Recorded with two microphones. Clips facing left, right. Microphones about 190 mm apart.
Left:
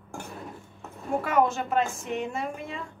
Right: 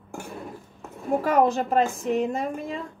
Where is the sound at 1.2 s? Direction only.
35° right (ahead or behind).